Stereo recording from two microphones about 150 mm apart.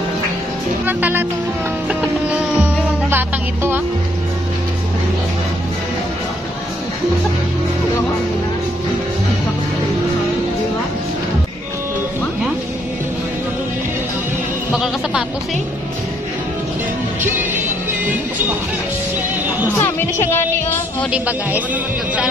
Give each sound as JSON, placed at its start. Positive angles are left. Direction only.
{"t": 0.8, "sound": "speech", "side_deg": -10}
{"t": 1.9, "sound": "music", "side_deg": -10}
{"t": 14.7, "sound": "music", "side_deg": -5}
{"t": 17.2, "sound": "music", "side_deg": -15}
{"t": 19.8, "sound": "a woman's voice", "side_deg": 15}
{"t": 21.1, "sound": "speech", "side_deg": -10}